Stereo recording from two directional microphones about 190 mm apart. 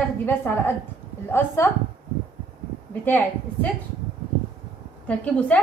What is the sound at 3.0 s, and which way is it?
Speech, 10° left (ahead or behind).